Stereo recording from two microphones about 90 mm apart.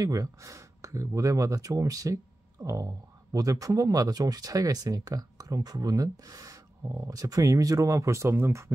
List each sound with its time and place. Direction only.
0.0 s speech: 40° right (ahead or behind)